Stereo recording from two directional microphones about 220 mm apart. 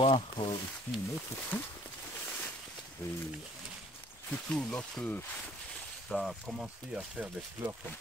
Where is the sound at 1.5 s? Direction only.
10° left (ahead or behind).